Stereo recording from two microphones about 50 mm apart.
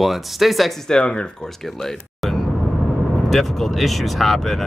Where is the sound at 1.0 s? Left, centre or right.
Centre.